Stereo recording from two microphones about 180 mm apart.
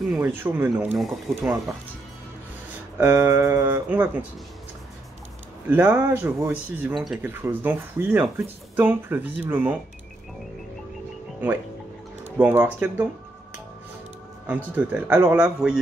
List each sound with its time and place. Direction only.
0.1 s speech: 10° right (ahead or behind)
0.9 s speech: centre (ahead or behind)
3.0 s speech: 15° right (ahead or behind)
5.7 s speech: 10° right (ahead or behind)
12.3 s speech: 10° right (ahead or behind)
14.8 s speech: 10° right (ahead or behind)